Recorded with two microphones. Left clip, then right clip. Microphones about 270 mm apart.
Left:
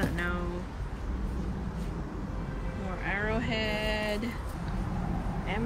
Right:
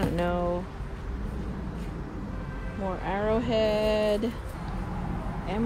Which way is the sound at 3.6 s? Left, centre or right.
Right.